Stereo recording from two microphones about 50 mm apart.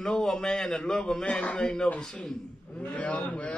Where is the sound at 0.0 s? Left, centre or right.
Centre.